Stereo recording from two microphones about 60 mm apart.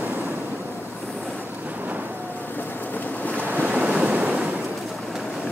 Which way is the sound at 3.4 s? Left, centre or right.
Right.